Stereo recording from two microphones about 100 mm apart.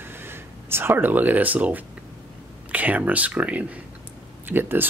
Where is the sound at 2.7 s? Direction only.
15° right (ahead or behind).